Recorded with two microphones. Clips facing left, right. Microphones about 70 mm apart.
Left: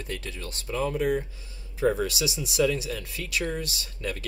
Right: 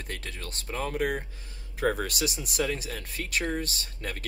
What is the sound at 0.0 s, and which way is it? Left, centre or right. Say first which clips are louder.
Speech: left 3 dB; right.